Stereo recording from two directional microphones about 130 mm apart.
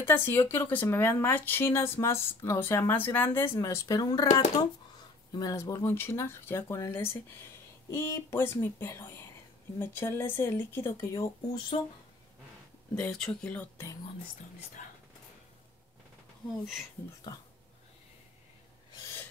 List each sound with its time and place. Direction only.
0.0 s speech: 15° left (ahead or behind)
4.3 s speech: 65° left (ahead or behind)
5.3 s speech: 30° left (ahead or behind)
12.9 s speech: 5° left (ahead or behind)
14.8 s a sound: 70° left (ahead or behind)